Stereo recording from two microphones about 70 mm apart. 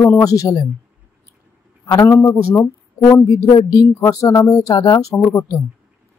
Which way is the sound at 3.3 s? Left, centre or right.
Left.